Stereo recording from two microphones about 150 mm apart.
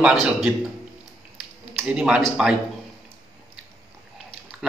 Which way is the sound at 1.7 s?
5° right (ahead or behind).